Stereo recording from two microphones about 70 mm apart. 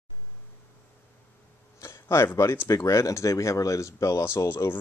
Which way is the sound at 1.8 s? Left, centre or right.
Left.